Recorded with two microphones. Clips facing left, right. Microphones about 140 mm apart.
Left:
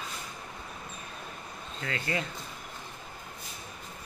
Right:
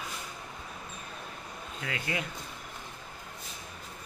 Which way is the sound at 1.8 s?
10° right (ahead or behind).